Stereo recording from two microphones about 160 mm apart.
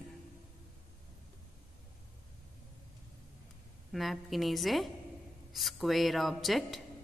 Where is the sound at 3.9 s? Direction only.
Centre (ahead or behind).